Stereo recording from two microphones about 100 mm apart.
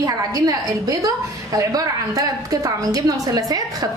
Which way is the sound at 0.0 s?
35° right (ahead or behind).